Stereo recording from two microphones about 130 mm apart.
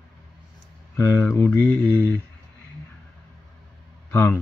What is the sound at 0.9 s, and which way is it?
Speech, 15° left (ahead or behind).